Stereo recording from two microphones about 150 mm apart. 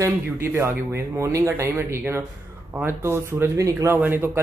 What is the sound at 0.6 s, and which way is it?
Speech, 15° right (ahead or behind).